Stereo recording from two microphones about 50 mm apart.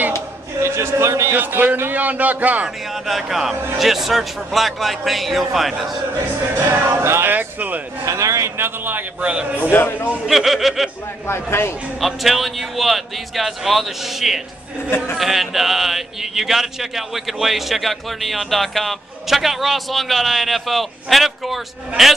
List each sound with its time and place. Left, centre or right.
0.6 s a sound: right
1.3 s a man's voice: right
3.1 s a man's voice: centre
7.0 s speech: right
7.2 s speech: right
8.0 s a man's voice: right
8.5 s speech: right
9.2 s a man's voice: right
9.6 s a man's voice: left
10.2 s a man's voice: centre
11.2 s a man's voice: left
12.0 s a man's voice: centre